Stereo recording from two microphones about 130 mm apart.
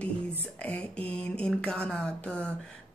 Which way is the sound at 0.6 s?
10° left (ahead or behind).